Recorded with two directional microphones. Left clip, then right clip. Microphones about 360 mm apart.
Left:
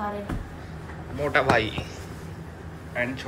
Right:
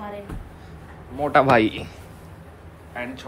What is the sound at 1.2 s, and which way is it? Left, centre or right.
Speech, centre.